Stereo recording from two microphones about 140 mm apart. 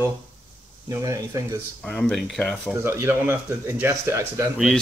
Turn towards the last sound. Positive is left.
turn(degrees=-20)  # may be behind; listen again after turning